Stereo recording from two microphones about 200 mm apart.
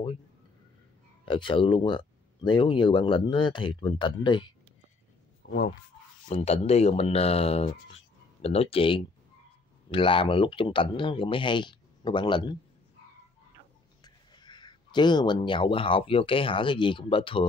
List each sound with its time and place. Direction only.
1.2 s speech: 25° left (ahead or behind)
5.4 s a sound: 45° left (ahead or behind)
6.2 s speech: 30° left (ahead or behind)
14.0 s speech: 20° left (ahead or behind)